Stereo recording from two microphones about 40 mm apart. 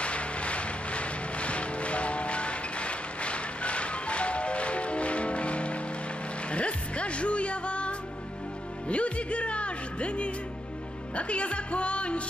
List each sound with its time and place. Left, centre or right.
0.0 s music: left
8.8 s speech: left